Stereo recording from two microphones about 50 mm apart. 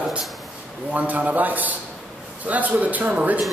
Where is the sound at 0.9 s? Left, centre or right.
Right.